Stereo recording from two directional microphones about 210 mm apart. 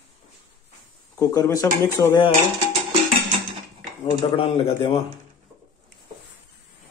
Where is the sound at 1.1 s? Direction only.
15° left (ahead or behind).